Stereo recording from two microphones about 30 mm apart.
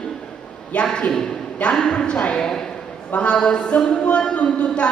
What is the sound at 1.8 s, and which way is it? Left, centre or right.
Speech, left.